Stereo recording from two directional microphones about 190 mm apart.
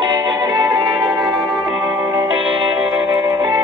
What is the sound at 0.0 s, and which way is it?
Music, 20° right (ahead or behind).